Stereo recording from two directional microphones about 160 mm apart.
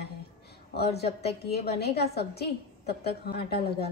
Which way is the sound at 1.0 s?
85° left.